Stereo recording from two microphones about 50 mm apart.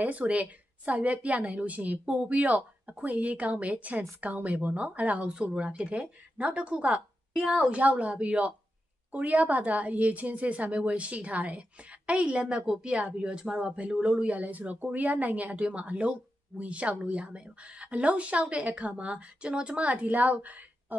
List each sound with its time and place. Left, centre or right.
0.0 s speech: right